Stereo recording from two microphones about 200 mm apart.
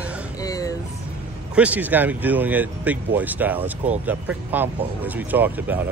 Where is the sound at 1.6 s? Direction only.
5° right (ahead or behind).